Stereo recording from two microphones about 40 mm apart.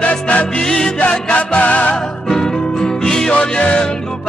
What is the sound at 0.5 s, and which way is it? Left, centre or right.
Music, centre.